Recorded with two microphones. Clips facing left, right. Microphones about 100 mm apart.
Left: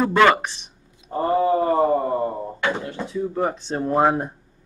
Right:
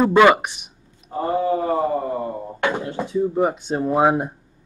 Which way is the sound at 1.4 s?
35° left (ahead or behind).